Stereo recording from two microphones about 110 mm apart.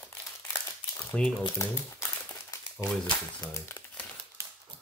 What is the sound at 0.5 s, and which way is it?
Crumpling, 25° left (ahead or behind).